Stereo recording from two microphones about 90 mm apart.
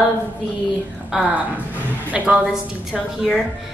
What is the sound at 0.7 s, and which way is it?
Speech, 15° right (ahead or behind).